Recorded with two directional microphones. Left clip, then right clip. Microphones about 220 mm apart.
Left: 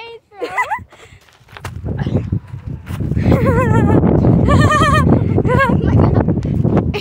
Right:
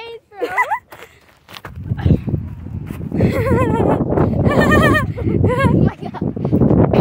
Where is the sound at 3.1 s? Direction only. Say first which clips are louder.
Left 1 dB; centre (ahead or behind).